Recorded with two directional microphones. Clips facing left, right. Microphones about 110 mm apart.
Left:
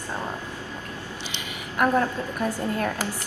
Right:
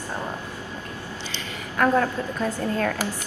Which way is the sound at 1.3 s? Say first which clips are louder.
Right 1 dB; 15° left (ahead or behind).